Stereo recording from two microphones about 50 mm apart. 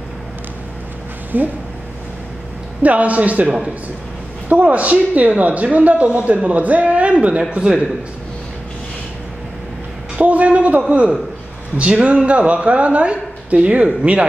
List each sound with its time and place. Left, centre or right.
1.3 s speech: right
2.8 s speech: right
10.1 s speech: right